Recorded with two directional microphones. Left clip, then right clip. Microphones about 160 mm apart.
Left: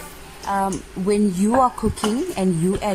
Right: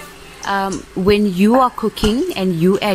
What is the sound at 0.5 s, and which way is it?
A woman's voice, 15° right (ahead or behind).